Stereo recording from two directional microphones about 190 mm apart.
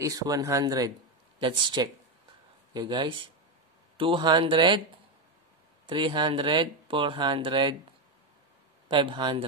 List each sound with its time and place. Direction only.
0.0 s speech: 20° right (ahead or behind)
5.9 s speech: 25° right (ahead or behind)
8.8 s speech: 25° right (ahead or behind)